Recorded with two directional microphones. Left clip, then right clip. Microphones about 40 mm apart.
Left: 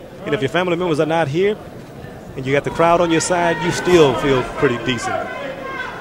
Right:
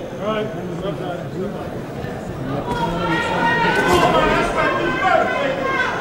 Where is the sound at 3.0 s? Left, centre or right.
Right.